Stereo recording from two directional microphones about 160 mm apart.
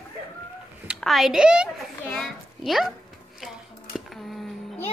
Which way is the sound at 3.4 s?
Centre (ahead or behind).